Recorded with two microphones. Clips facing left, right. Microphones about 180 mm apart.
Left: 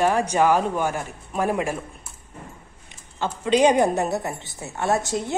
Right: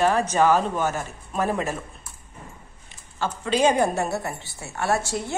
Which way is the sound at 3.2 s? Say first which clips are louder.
Left 3 dB; 20° left (ahead or behind).